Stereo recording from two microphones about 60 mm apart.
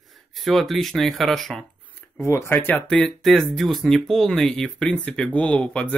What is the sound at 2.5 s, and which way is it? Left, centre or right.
Speech, left.